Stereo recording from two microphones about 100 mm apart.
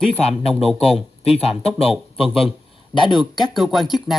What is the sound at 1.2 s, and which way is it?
Speech, 80° left.